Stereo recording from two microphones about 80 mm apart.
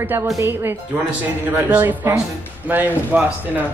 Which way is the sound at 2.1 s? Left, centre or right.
Right.